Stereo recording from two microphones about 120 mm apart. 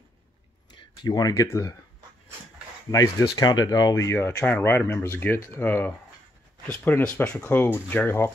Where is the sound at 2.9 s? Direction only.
30° left (ahead or behind).